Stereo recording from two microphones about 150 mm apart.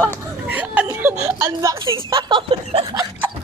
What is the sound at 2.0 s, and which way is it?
Speech, 35° right (ahead or behind).